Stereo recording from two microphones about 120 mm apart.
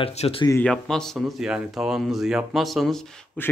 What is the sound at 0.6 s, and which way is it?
Speech, 5° left (ahead or behind).